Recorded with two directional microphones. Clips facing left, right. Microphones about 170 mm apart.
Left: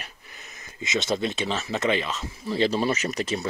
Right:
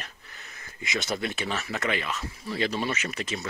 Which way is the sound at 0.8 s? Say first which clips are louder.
Left 4 dB; 20° left (ahead or behind).